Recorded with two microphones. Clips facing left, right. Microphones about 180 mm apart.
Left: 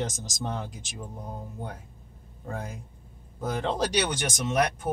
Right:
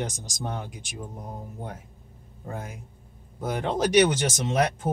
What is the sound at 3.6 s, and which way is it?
Speech, 15° right (ahead or behind).